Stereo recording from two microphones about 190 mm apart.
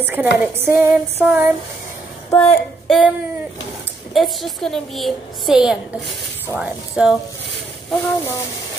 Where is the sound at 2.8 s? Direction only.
Centre (ahead or behind).